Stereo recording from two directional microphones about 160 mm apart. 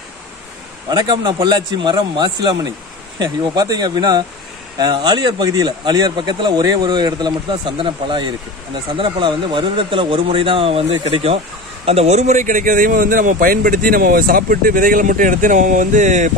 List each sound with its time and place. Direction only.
0.8 s a man's voice: 25° right (ahead or behind); by 16.3 s 50° right (ahead or behind)